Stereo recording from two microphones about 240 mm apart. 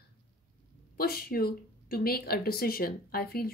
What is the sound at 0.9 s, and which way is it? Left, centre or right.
A woman's voice, left.